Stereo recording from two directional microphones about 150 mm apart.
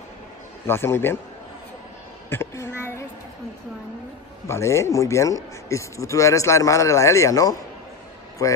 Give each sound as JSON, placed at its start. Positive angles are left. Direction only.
{"t": 0.7, "sound": "a man's voice", "side_deg": 15}
{"t": 2.2, "sound": "speech", "side_deg": 15}
{"t": 4.5, "sound": "speech", "side_deg": 20}